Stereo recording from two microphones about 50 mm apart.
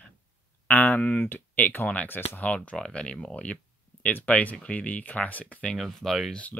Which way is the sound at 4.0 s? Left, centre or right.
Left.